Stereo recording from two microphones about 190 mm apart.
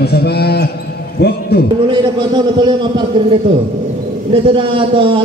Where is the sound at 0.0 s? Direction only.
60° left (ahead or behind).